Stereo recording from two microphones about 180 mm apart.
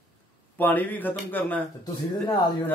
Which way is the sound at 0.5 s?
10° left (ahead or behind).